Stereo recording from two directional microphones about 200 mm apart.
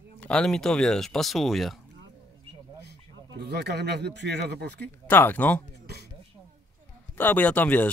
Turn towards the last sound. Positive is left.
turn(degrees=10)  # may be behind; listen again after turning